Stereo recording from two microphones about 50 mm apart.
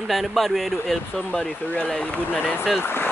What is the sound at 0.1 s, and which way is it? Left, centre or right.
Speech, centre.